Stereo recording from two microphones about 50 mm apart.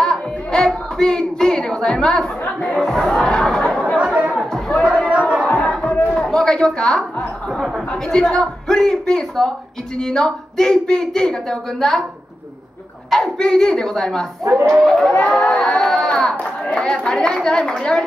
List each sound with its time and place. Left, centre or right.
0.0 s music: centre
2.7 s chatter: centre
3.9 s chatter: right
4.9 s a sound: right
5.6 s crowd: centre
5.9 s a sound: left
6.2 s a woman's voice: centre
7.2 s music: centre
7.9 s a woman's voice: centre
13.4 s a woman's voice: centre
14.5 s speech: right
14.8 s speech: centre
15.4 s a sound: left
16.7 s a woman's voice: centre